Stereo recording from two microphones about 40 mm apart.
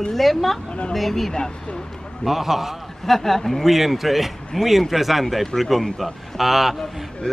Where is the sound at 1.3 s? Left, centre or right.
Left.